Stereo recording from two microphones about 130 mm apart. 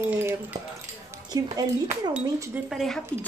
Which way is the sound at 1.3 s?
30° right (ahead or behind).